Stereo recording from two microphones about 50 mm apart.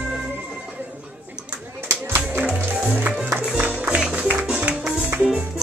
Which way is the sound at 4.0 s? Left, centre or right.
Centre.